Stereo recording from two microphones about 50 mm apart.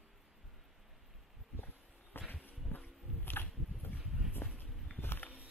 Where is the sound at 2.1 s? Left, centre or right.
Left.